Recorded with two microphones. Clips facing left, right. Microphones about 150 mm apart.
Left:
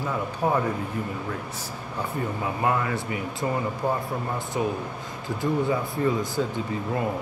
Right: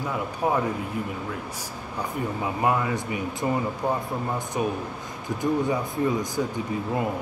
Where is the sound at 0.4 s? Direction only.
10° right (ahead or behind).